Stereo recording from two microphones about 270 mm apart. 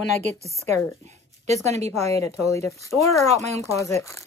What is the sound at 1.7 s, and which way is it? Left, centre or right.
Speech, right.